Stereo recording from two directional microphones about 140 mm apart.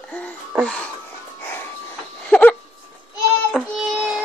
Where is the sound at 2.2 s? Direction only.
10° left (ahead or behind).